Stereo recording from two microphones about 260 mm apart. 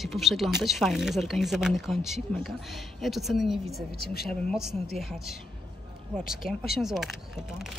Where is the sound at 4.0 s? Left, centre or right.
Left.